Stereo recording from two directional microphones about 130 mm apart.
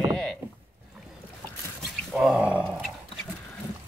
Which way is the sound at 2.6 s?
5° right (ahead or behind).